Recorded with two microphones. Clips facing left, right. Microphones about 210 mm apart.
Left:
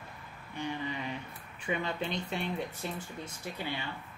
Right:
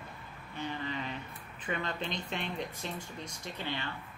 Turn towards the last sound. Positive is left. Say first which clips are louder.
# left 1 dB
turn(degrees=10)  # may be behind; listen again after turning